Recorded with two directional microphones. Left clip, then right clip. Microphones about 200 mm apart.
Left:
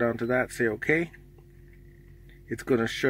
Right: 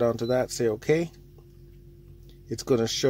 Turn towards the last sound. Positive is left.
turn(degrees=-20)  # may be behind; listen again after turning